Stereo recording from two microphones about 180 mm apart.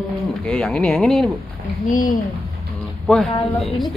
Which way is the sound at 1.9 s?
50° left (ahead or behind).